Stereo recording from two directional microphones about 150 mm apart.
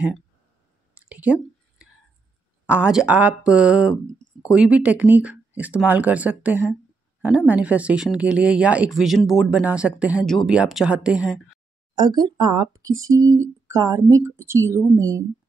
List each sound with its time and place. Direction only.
0.9 s whispering: 10° right (ahead or behind)
2.6 s speech: 10° right (ahead or behind)
11.9 s speech: 30° right (ahead or behind)